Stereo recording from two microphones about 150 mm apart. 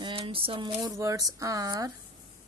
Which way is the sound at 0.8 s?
20° right (ahead or behind).